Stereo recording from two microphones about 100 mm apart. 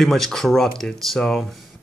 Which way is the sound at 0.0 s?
5° left (ahead or behind).